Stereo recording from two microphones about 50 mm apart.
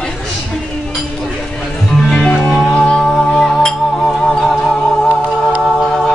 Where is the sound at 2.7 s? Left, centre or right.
Centre.